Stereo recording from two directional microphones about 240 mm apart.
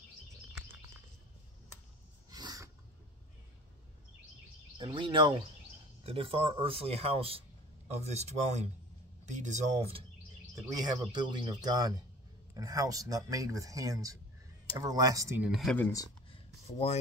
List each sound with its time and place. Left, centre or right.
2.3 s a sound: centre
4.7 s speech: centre
10.5 s speech: centre
16.6 s speech: left